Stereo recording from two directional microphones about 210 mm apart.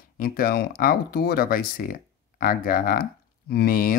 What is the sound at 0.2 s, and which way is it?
Speech, 45° left (ahead or behind).